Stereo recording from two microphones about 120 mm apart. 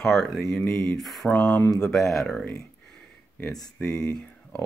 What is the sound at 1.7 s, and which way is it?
Speech, 5° left (ahead or behind).